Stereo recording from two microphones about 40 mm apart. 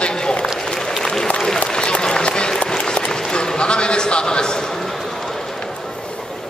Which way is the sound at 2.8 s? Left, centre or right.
Left.